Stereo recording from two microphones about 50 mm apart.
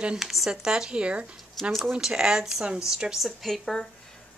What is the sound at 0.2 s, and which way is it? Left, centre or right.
Speech, centre.